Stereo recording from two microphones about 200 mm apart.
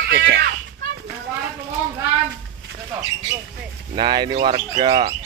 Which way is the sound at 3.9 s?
25° right (ahead or behind).